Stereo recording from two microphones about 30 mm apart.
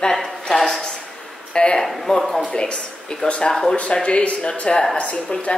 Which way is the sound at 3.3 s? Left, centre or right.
Left.